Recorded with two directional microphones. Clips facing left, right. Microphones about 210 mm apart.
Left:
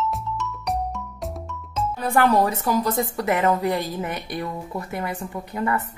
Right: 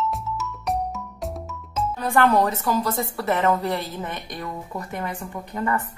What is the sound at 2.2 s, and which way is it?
A woman's voice, 15° left (ahead or behind).